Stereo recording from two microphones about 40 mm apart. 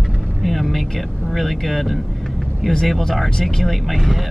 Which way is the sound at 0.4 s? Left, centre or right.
Centre.